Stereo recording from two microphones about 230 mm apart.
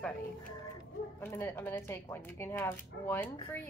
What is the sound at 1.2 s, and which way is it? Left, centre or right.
A woman's voice, centre.